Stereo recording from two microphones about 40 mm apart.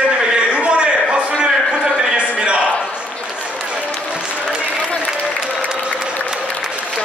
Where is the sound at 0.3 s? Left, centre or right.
Right.